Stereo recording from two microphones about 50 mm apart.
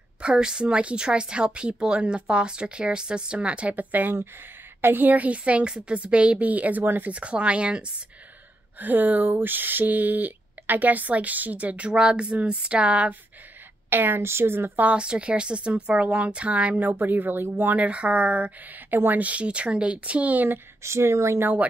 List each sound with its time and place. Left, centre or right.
0.2 s a woman's voice: centre; by 7.2 s right
7.2 s a woman's voice: right
8.7 s speech: right
11.9 s a woman's voice: centre
13.8 s a woman's voice: right
14.8 s a woman's voice: right
16.8 s speech: right
17.7 s a woman's voice: right
20.8 s speech: right